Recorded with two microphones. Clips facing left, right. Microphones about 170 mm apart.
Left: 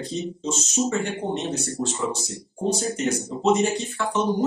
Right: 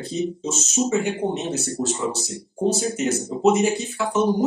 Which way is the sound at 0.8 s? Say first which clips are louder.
Right 6 dB; 5° right (ahead or behind).